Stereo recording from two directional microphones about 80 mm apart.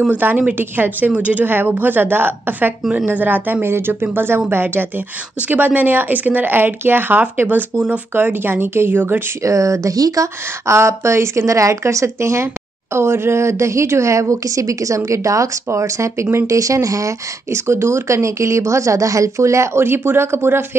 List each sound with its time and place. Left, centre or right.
0.1 s a woman's voice: right
7.7 s speech: centre
8.1 s a woman's voice: right
9.4 s speech: right
16.5 s speech: right